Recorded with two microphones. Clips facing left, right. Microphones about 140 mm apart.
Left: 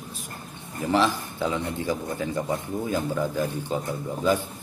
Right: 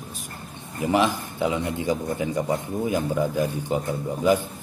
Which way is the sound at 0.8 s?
15° right (ahead or behind).